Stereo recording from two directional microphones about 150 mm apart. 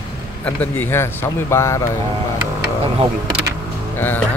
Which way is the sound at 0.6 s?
15° left (ahead or behind).